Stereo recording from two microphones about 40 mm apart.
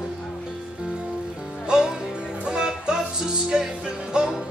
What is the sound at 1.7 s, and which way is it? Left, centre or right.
Music, centre.